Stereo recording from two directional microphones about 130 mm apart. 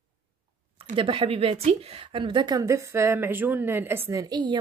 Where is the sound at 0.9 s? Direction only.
40° right (ahead or behind).